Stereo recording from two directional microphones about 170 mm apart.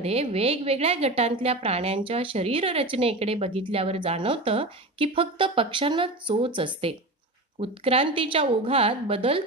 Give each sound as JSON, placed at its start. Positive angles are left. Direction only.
{"t": 0.0, "sound": "a woman's voice", "side_deg": -35}